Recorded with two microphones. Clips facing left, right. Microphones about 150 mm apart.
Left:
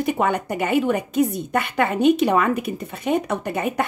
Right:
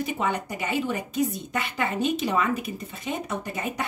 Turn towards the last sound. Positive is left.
turn(degrees=60)  # may be behind; listen again after turning